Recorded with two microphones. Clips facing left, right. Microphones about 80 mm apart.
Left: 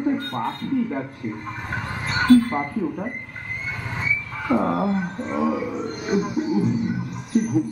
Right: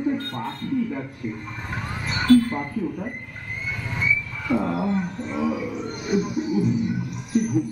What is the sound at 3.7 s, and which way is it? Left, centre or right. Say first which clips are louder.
Dog: right 2 dB; left.